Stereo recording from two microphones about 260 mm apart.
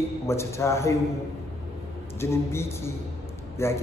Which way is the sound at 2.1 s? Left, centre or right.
Centre.